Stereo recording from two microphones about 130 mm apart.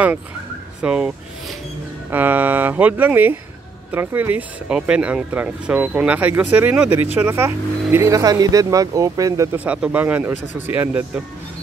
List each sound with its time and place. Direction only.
0.8 s speech: 10° right (ahead or behind); by 9.6 s 25° right (ahead or behind)
9.7 s speech: 10° right (ahead or behind)